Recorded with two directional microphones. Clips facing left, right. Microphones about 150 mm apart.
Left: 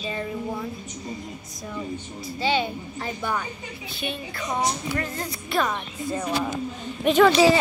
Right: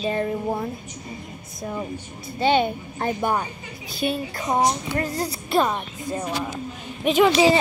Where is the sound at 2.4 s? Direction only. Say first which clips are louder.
Right 5 dB; 55° right (ahead or behind).